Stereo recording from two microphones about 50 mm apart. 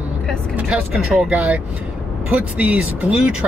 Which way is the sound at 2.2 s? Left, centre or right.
Right.